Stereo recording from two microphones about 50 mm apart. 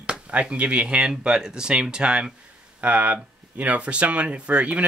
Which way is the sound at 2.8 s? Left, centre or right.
Right.